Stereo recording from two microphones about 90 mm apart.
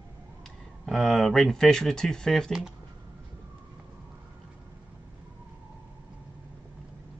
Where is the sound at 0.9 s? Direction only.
Centre (ahead or behind).